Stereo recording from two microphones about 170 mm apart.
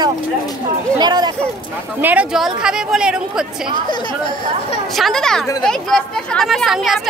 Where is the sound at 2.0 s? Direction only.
10° right (ahead or behind).